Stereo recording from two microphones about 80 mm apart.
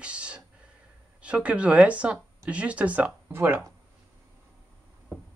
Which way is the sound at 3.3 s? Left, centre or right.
Right.